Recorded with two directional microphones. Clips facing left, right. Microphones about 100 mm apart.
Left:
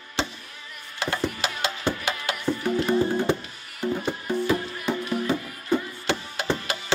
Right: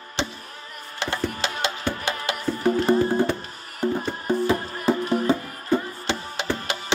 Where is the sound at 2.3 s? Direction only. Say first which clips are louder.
Right 3 dB; 40° right (ahead or behind).